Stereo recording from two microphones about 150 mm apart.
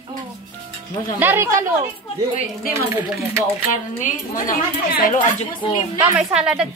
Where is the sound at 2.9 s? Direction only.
20° right (ahead or behind).